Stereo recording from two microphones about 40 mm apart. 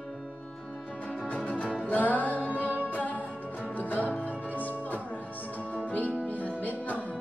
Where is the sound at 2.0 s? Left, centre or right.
Left.